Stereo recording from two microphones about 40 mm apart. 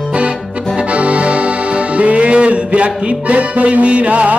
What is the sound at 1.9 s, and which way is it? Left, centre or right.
Music, right.